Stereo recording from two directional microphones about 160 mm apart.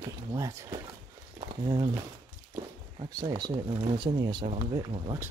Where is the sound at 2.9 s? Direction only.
30° right (ahead or behind).